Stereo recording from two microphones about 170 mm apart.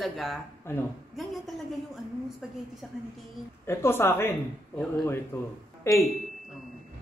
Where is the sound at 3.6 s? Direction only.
15° left (ahead or behind).